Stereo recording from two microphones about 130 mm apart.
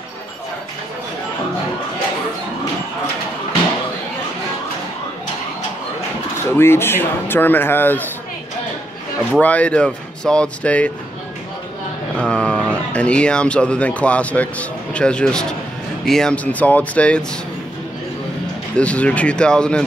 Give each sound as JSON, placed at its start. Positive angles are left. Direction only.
{"t": 6.5, "sound": "speech", "side_deg": 20}
{"t": 9.3, "sound": "speech", "side_deg": 10}
{"t": 12.2, "sound": "speech", "side_deg": 5}
{"t": 18.8, "sound": "speech", "side_deg": 10}